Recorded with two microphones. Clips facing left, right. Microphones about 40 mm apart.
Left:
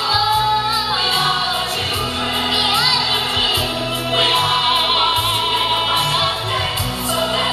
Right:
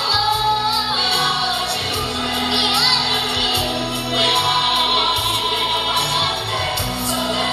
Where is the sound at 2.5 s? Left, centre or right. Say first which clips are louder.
Left 1 dB; left.